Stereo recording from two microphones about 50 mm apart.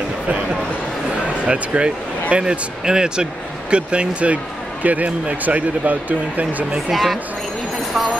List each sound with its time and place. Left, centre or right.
1.4 s speech: right
6.9 s speech: centre